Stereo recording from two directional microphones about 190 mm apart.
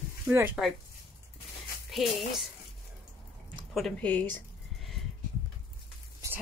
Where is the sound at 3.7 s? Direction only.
5° left (ahead or behind).